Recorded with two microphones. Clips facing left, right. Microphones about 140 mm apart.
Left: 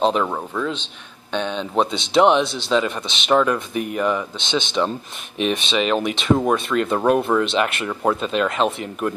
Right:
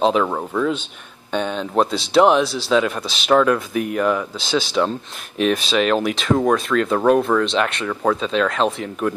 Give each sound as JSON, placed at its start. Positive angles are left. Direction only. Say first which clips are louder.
{"t": 0.0, "sound": "speech", "louder": "right 2 dB", "side_deg": 0}